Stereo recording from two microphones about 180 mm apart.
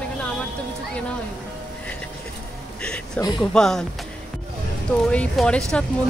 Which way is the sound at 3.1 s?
20° left (ahead or behind).